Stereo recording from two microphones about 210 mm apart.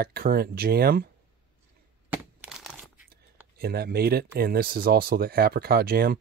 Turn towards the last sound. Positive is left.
turn(degrees=-45)  # may be behind; listen again after turning